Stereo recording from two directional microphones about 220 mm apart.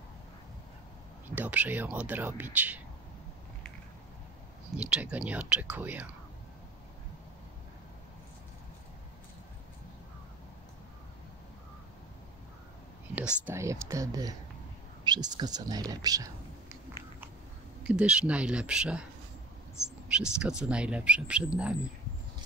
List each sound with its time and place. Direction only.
1.3 s speech: 5° right (ahead or behind)
4.7 s speech: 5° right (ahead or behind)
13.1 s speech: 10° right (ahead or behind)
17.8 s speech: 5° right (ahead or behind)